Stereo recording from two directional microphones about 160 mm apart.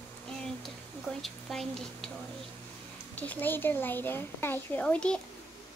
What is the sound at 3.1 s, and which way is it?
A child's voice, 10° left (ahead or behind).